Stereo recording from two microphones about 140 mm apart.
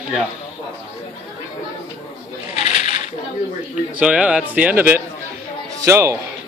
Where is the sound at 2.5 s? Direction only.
50° left (ahead or behind).